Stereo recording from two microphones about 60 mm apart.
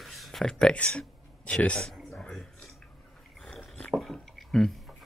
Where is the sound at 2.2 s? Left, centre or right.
Centre.